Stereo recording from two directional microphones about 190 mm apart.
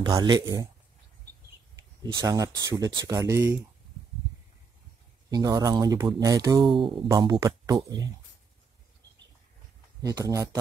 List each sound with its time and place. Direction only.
0.0 s speech: 20° right (ahead or behind)
2.1 s speech: 15° right (ahead or behind)
5.3 s speech: 20° right (ahead or behind)
10.0 s speech: 20° right (ahead or behind)